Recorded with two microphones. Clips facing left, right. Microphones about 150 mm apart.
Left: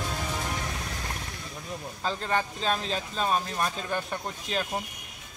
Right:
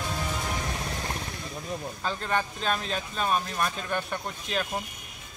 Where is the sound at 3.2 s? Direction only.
30° left (ahead or behind).